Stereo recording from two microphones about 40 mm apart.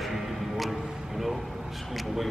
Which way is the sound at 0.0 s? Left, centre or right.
Centre.